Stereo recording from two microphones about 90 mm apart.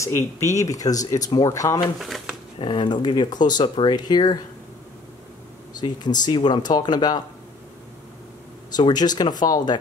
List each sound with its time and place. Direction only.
0.0 s speech: 35° left (ahead or behind)
2.0 s speech: 5° right (ahead or behind)
2.6 s speech: 55° left (ahead or behind)
5.8 s speech: 50° left (ahead or behind)
8.7 s speech: 50° left (ahead or behind)